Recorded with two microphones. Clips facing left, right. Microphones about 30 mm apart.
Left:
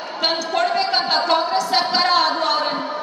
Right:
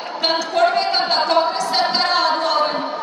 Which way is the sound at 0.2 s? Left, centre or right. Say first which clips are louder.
Right 3 dB; centre.